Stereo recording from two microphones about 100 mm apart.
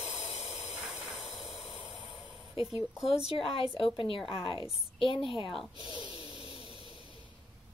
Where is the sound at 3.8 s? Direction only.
60° left (ahead or behind).